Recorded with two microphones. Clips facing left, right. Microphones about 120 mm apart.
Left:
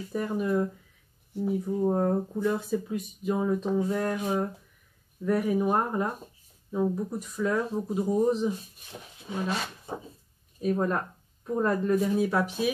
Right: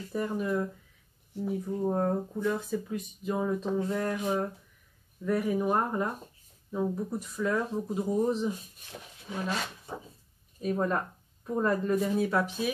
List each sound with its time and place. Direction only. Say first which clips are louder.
0.1 s speech: left 2 dB; 5° left (ahead or behind)
10.6 s speech: left 2 dB; centre (ahead or behind)